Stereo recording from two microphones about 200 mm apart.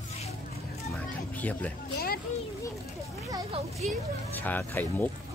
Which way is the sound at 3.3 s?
25° right (ahead or behind).